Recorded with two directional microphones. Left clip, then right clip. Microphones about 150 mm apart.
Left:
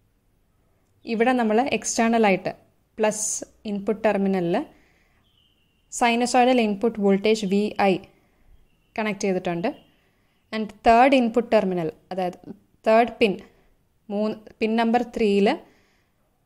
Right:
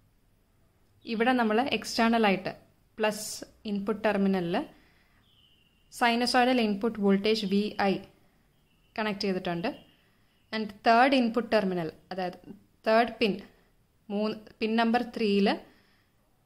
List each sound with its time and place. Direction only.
1.0 s a woman's voice: 30° left (ahead or behind)